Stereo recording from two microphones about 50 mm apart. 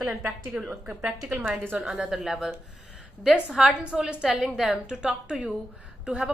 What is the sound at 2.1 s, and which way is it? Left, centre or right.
Speech, centre.